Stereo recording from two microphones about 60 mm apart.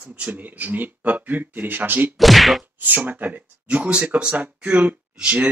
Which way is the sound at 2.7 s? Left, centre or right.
Right.